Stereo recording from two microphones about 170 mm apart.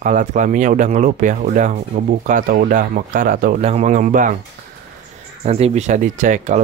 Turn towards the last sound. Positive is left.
turn(degrees=-45)  # may be behind; listen again after turning